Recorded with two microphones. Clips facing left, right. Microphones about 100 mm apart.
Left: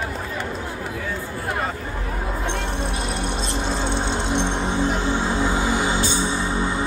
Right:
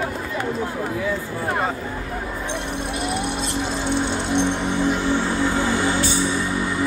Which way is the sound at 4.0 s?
20° left (ahead or behind).